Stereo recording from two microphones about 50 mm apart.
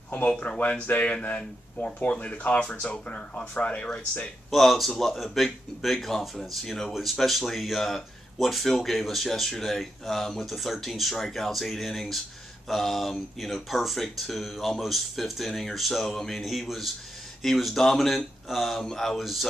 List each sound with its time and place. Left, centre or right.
0.6 s speech: left
4.5 s a man's voice: centre